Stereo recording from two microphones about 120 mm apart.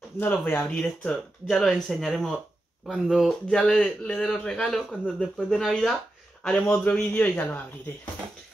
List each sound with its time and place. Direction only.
0.2 s speech: 15° left (ahead or behind)
0.7 s a man's voice: 5° left (ahead or behind)